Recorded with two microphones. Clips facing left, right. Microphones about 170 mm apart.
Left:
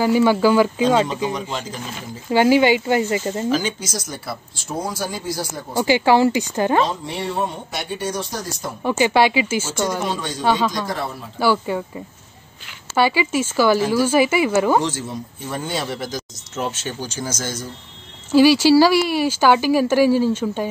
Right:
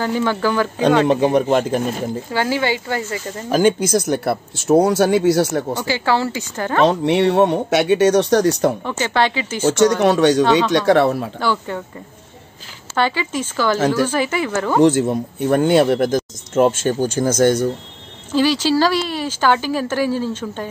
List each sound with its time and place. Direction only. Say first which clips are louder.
0.0 s a woman's voice: left 4 dB; 10° left (ahead or behind)
1.2 s speech: right 10 dB; 55° right (ahead or behind)
2.3 s a woman's voice: left 7 dB; 15° left (ahead or behind)
3.5 s speech: right 8 dB; 55° right (ahead or behind)
5.8 s a woman's voice: left 8 dB; 15° left (ahead or behind)
6.8 s speech: right 8 dB; 70° right (ahead or behind)
8.8 s a woman's voice: left 3 dB; 10° left (ahead or behind)
9.6 s speech: right 9 dB; 70° right (ahead or behind)
11.3 s a woman's voice: left 2 dB; 10° left (ahead or behind)
12.9 s a woman's voice: left 2 dB; 10° left (ahead or behind)
14.8 s speech: right 11 dB; 60° right (ahead or behind)
18.3 s a woman's voice: left 4 dB; 10° left (ahead or behind)